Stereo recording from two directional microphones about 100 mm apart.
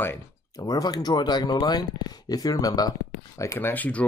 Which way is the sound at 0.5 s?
35° left (ahead or behind).